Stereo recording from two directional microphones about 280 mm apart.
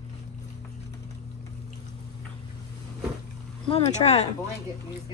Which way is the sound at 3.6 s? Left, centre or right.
Left.